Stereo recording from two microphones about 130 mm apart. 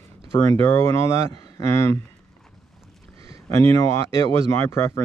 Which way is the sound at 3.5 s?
20° left (ahead or behind).